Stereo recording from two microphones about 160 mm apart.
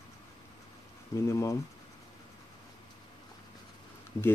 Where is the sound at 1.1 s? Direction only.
20° left (ahead or behind).